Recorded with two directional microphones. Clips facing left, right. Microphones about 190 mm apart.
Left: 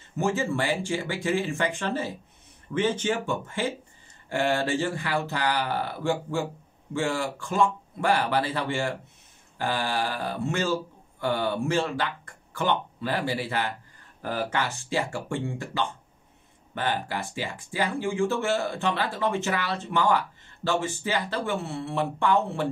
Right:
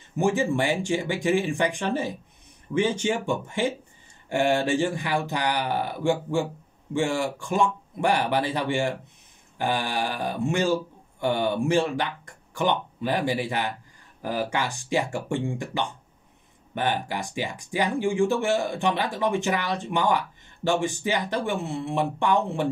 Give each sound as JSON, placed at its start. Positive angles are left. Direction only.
{"t": 0.2, "sound": "speech", "side_deg": -15}